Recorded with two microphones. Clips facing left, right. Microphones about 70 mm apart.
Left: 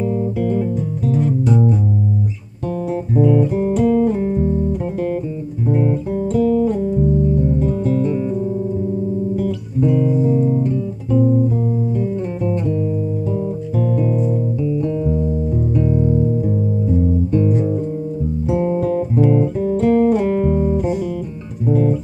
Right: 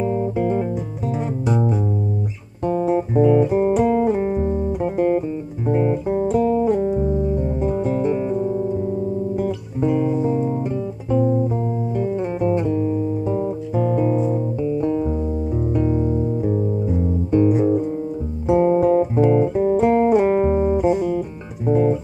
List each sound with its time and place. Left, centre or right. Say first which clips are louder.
0.0 s music: left 1 dB; right
2.7 s guitar: right 2 dB; right
3.8 s music: left 2 dB; right
5.7 s guitar: even; right
6.4 s music: left 1 dB; right
10.2 s guitar: left 4 dB; right
14.3 s music: left 1 dB; right
17.5 s guitar: right 2 dB; centre
18.5 s music: right 4 dB; right
20.7 s music: right 2 dB; centre
21.6 s music: even; right